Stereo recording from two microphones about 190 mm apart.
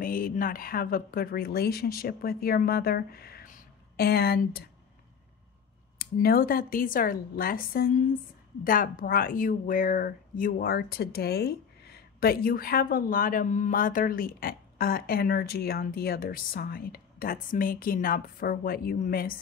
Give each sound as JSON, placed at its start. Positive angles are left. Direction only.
{"t": 0.0, "sound": "speech", "side_deg": 50}
{"t": 5.9, "sound": "speech", "side_deg": 50}